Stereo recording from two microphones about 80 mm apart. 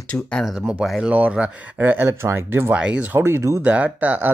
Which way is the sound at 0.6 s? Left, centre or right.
Centre.